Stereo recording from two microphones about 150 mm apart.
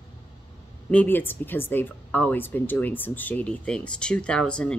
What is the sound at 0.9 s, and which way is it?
Speech, 10° left (ahead or behind).